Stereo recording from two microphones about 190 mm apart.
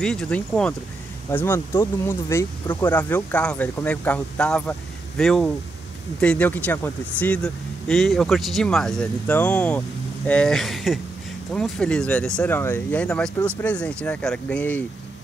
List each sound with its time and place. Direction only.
0.0 s speech: 5° left (ahead or behind)